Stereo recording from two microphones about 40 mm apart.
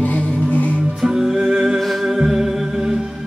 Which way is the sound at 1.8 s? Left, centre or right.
Centre.